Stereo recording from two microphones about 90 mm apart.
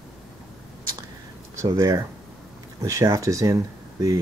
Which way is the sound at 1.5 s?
35° right (ahead or behind).